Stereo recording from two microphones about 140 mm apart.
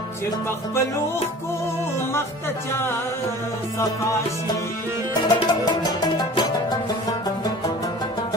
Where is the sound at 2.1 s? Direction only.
15° left (ahead or behind).